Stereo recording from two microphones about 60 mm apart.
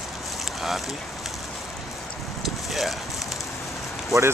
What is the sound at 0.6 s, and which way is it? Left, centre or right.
Speech, centre.